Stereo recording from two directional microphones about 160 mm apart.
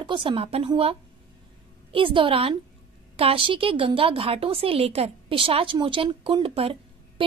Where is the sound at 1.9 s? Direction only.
35° right (ahead or behind).